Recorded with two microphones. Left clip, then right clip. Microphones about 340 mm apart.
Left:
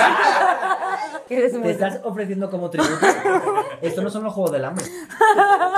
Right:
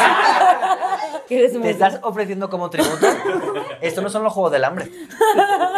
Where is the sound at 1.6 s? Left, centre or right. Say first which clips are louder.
Right 5 dB; right.